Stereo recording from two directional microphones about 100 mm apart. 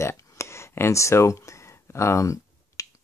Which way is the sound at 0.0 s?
30° left (ahead or behind).